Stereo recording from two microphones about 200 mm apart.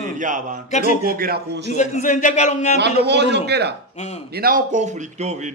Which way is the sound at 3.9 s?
35° left (ahead or behind).